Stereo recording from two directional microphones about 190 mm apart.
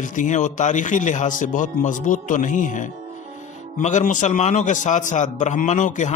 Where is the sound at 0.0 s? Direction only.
40° left (ahead or behind).